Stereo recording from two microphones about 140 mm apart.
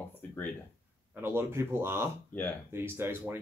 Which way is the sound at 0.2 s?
10° left (ahead or behind).